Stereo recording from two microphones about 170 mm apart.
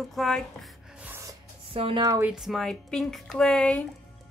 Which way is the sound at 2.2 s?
5° right (ahead or behind).